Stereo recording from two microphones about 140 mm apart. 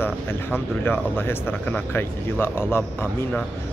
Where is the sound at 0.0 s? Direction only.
15° left (ahead or behind).